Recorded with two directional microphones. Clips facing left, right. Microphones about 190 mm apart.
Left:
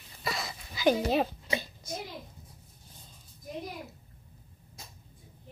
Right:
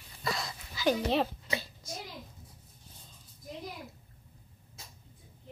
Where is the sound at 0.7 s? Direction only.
15° left (ahead or behind).